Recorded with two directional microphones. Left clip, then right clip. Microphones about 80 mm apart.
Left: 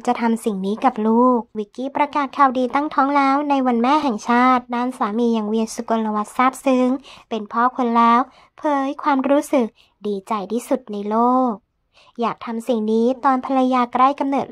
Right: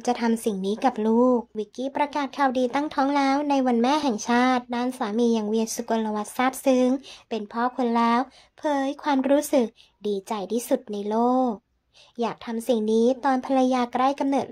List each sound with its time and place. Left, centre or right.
0.0 s speech: left